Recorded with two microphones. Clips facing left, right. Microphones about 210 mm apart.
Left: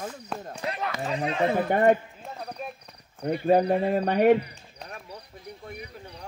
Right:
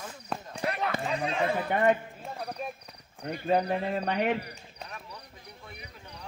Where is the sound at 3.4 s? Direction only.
40° left (ahead or behind).